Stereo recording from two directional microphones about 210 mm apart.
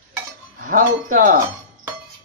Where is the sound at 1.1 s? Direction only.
40° right (ahead or behind).